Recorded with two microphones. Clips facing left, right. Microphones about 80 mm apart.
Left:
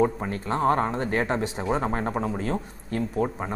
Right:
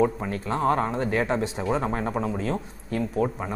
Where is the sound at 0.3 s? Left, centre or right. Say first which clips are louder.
Left 1 dB; centre.